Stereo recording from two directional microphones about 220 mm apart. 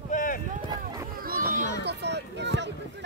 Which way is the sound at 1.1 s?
40° right (ahead or behind).